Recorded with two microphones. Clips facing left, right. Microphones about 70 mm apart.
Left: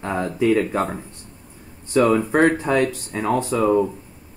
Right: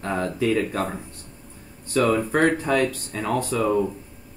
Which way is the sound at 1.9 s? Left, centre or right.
Centre.